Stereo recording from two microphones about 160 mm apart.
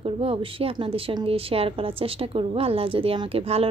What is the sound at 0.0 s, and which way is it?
A woman's voice, 35° right (ahead or behind).